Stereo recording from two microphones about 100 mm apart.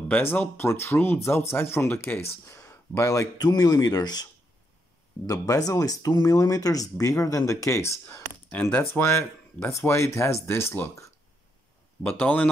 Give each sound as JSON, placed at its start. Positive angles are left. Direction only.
{"t": 0.1, "sound": "speech", "side_deg": 20}
{"t": 3.3, "sound": "speech", "side_deg": 45}
{"t": 8.1, "sound": "speech", "side_deg": 20}
{"t": 12.1, "sound": "speech", "side_deg": 15}